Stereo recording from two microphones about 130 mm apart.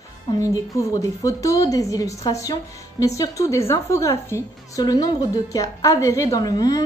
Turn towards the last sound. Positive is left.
turn(degrees=25)  # may be behind; listen again after turning